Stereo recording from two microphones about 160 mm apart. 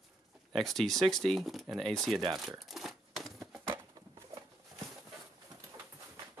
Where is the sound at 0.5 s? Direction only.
Centre (ahead or behind).